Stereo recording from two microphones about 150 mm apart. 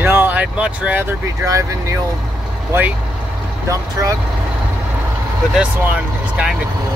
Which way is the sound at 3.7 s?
20° right (ahead or behind).